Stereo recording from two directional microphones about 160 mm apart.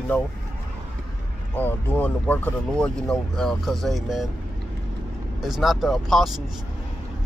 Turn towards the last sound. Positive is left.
turn(degrees=0)  # may be behind; listen again after turning